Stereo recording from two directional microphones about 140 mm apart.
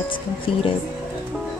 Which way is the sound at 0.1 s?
40° left (ahead or behind).